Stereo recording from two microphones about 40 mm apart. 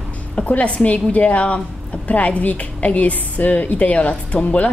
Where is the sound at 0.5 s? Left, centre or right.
Left.